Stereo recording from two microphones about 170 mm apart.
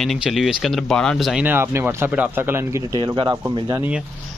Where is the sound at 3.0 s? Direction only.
25° right (ahead or behind).